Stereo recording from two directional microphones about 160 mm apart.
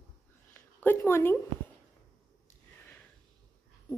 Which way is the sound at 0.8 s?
15° left (ahead or behind).